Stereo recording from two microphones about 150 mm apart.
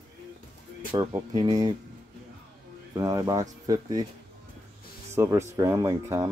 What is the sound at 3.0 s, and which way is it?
Speech, 25° right (ahead or behind).